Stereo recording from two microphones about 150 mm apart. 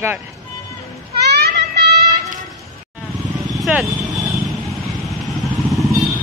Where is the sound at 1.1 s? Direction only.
90° right.